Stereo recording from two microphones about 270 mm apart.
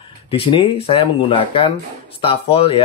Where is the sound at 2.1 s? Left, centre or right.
Centre.